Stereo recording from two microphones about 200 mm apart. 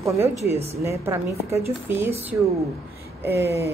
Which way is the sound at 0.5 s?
30° right (ahead or behind).